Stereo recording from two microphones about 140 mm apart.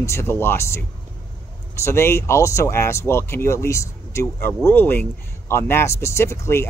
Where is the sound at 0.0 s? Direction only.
20° left (ahead or behind).